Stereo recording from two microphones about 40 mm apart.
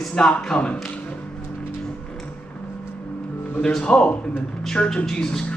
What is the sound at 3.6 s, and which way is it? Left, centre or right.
Speech, centre.